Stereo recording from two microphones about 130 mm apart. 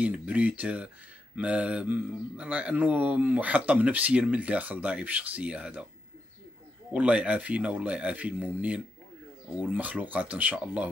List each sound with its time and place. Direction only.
0.0 s speech: 10° right (ahead or behind)
6.9 s speech: 10° right (ahead or behind)